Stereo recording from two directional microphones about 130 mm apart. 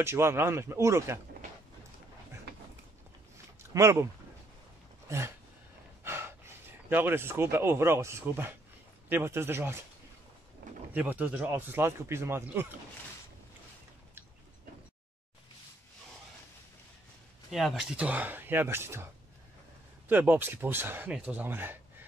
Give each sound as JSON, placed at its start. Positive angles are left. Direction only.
{"t": 0.0, "sound": "speech", "side_deg": -20}
{"t": 3.7, "sound": "speech", "side_deg": -20}
{"t": 6.0, "sound": "speech", "side_deg": -20}
{"t": 10.9, "sound": "speech", "side_deg": -15}
{"t": 17.5, "sound": "speech", "side_deg": -5}
{"t": 20.1, "sound": "speech", "side_deg": -15}